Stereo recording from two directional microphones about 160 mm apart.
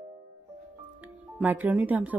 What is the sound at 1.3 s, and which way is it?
Speech, 10° right (ahead or behind).